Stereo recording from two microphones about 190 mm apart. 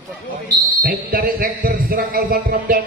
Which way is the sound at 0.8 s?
50° right (ahead or behind).